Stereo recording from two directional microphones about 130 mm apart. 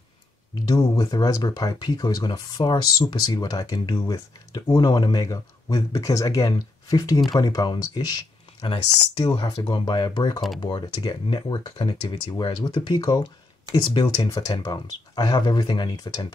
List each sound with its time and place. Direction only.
0.7 s speech: 30° left (ahead or behind)
9.2 s speech: 35° left (ahead or behind)